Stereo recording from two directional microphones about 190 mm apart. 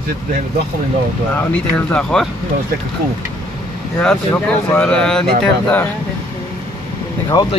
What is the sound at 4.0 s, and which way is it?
Speech, 5° left (ahead or behind).